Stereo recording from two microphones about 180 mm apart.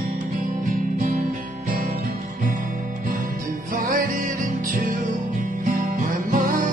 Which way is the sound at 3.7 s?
50° right (ahead or behind).